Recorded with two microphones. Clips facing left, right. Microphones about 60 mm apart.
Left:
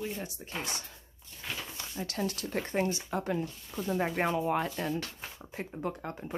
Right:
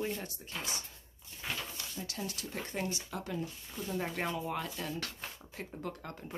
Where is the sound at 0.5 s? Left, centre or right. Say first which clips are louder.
Left 4 dB; left.